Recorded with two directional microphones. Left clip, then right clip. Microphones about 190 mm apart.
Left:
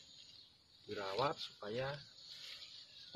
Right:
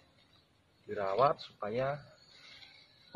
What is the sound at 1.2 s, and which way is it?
Speech, 15° left (ahead or behind).